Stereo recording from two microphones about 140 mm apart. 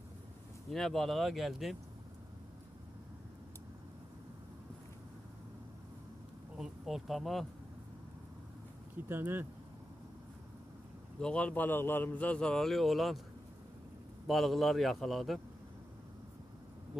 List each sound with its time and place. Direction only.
0.7 s a man's voice: centre (ahead or behind)
6.5 s speech: 5° right (ahead or behind)
9.1 s speech: 15° right (ahead or behind)
11.1 s a man's voice: 5° left (ahead or behind)
14.2 s a man's voice: centre (ahead or behind)